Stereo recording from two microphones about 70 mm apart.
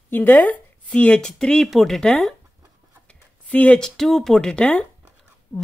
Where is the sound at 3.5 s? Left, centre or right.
Left.